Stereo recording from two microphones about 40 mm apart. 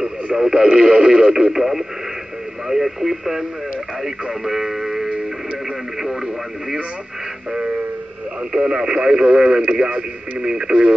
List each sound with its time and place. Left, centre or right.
0.5 s speech: centre
6.0 s radio: centre
8.5 s speech: centre